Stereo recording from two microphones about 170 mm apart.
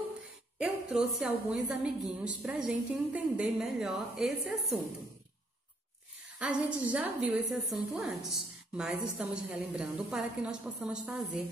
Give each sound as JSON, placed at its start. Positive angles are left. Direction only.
{"t": 0.6, "sound": "a woman's voice", "side_deg": -5}
{"t": 6.4, "sound": "a woman's voice", "side_deg": -5}